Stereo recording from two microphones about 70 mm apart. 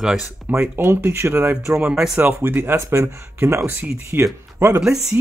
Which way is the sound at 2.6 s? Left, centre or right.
Right.